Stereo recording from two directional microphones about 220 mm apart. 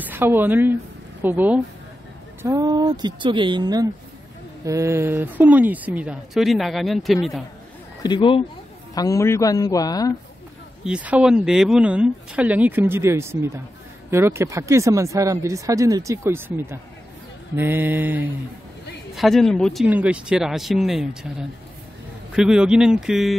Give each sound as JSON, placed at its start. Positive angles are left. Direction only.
{"t": 0.0, "sound": "a woman's voice", "side_deg": -10}
{"t": 8.0, "sound": "speech", "side_deg": 20}
{"t": 10.8, "sound": "speech", "side_deg": -5}